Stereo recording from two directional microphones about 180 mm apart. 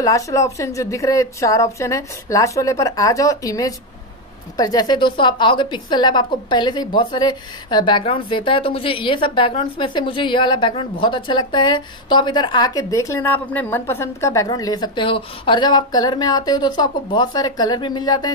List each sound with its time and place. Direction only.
0.0 s a woman's voice: 20° left (ahead or behind)